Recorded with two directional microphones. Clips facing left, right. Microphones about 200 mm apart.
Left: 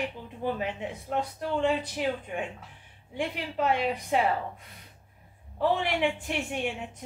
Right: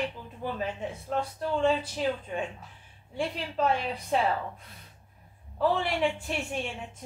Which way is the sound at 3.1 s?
15° left (ahead or behind).